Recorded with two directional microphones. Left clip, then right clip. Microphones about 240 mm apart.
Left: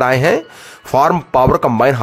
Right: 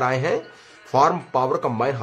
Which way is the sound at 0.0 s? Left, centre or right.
Left.